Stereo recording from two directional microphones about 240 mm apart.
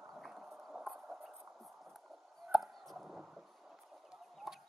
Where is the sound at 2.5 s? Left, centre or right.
Centre.